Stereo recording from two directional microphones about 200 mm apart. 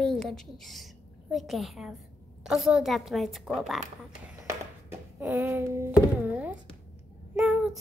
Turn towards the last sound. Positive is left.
turn(degrees=-5)  # may be behind; listen again after turning